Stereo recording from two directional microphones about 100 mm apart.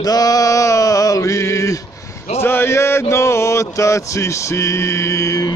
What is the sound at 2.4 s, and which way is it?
Mantra, 25° left (ahead or behind).